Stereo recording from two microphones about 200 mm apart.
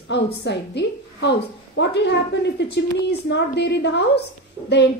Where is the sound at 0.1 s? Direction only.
60° left (ahead or behind).